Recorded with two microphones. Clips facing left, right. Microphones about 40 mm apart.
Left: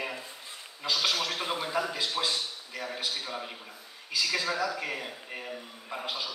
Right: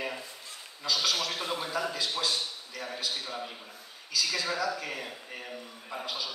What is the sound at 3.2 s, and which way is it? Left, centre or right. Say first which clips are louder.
Speech: left 1 dB; left.